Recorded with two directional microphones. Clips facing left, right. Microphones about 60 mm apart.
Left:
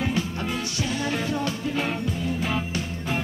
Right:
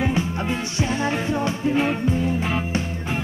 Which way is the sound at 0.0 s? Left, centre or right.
Right.